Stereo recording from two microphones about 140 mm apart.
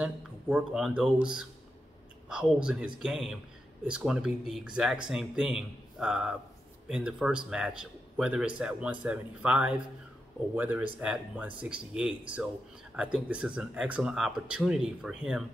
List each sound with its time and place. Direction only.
0.0 s a man's voice: 5° right (ahead or behind)